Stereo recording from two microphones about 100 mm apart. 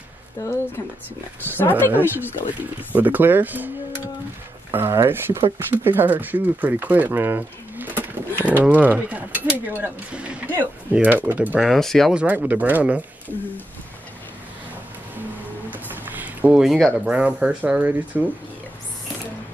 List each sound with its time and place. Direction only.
0.4 s a woman's voice: 30° left (ahead or behind)
2.6 s speech: 15° right (ahead or behind)
4.7 s speech: 25° right (ahead or behind)
11.6 s speech: centre (ahead or behind)
12.1 s speech: 15° right (ahead or behind)
15.7 s a sound: 15° right (ahead or behind)
16.6 s speech: 5° right (ahead or behind)